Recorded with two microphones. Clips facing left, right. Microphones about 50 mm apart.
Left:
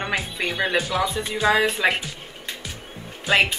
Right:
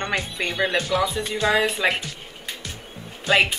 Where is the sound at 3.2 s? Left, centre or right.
Centre.